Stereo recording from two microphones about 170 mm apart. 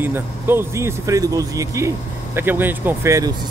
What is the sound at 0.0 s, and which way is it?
Speech, 10° right (ahead or behind).